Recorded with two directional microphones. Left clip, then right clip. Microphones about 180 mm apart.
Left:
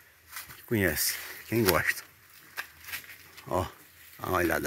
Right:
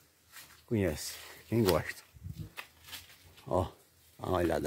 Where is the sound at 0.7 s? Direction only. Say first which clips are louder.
Left 5 dB; 5° right (ahead or behind).